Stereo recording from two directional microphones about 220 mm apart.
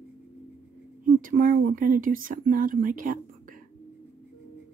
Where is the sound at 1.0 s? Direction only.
40° right (ahead or behind).